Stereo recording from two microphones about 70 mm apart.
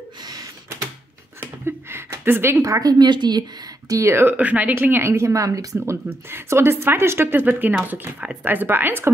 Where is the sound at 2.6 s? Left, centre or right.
Right.